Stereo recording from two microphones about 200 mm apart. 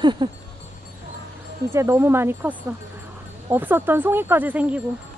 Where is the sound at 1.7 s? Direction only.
15° right (ahead or behind).